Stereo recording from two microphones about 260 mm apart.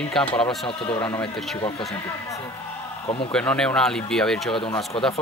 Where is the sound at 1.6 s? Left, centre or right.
Centre.